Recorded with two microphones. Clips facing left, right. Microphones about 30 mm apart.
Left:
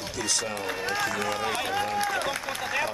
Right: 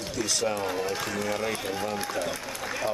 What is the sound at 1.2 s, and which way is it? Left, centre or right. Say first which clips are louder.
Speech: left 1 dB; left.